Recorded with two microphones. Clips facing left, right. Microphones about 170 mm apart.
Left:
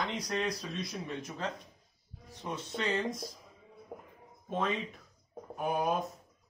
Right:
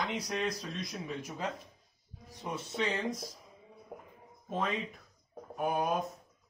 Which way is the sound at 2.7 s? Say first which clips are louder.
Left 1 dB; 5° right (ahead or behind).